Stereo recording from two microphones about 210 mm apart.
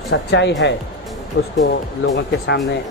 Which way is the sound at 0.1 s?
55° left (ahead or behind).